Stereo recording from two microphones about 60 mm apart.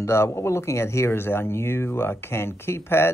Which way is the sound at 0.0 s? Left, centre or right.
Left.